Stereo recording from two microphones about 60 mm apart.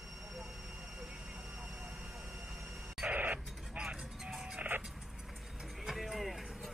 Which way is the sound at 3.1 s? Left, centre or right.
Right.